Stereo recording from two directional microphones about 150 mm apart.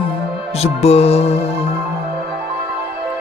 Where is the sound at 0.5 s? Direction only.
45° left (ahead or behind).